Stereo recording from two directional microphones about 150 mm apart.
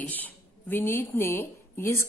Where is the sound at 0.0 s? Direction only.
10° left (ahead or behind).